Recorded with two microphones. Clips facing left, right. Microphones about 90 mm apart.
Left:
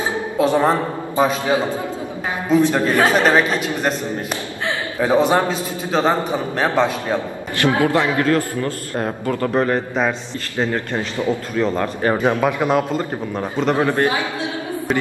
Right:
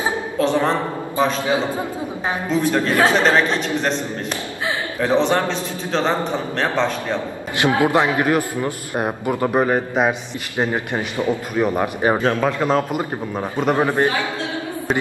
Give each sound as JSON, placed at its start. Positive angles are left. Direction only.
{"t": 0.4, "sound": "a man's voice", "side_deg": 10}
{"t": 2.6, "sound": "a man's voice", "side_deg": 15}
{"t": 2.9, "sound": "a man's voice", "side_deg": 5}
{"t": 5.0, "sound": "a man's voice", "side_deg": 10}
{"t": 7.5, "sound": "a man's voice", "side_deg": -20}
{"t": 12.2, "sound": "a man's voice", "side_deg": 15}
{"t": 12.9, "sound": "a man's voice", "side_deg": -15}